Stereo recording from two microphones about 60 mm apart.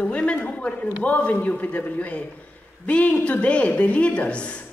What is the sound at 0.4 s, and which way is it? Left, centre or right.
A man's voice, left.